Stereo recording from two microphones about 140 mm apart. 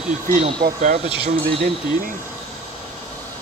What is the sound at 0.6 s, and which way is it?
Speech, 65° right (ahead or behind).